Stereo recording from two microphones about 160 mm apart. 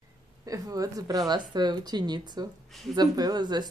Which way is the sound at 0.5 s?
20° right (ahead or behind).